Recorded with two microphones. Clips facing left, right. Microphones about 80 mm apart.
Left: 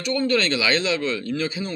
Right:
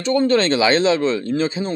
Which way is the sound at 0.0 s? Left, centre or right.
Right.